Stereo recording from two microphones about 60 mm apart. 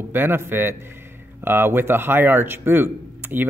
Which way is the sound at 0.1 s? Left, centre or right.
Right.